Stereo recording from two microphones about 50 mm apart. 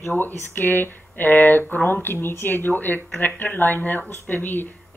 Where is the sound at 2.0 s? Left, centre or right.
Left.